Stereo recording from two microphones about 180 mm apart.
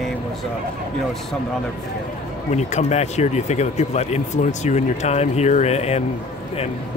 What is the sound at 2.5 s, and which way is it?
Speech, 40° left (ahead or behind).